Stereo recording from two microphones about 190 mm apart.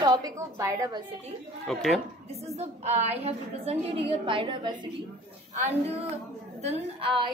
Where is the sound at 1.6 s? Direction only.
Centre (ahead or behind).